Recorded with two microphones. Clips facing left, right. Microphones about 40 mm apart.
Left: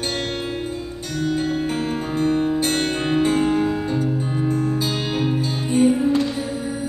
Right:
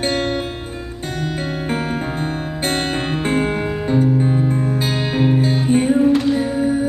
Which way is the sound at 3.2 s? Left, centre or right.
Right.